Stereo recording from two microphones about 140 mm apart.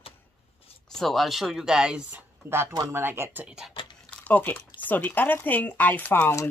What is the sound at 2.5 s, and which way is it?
Speech, 15° right (ahead or behind).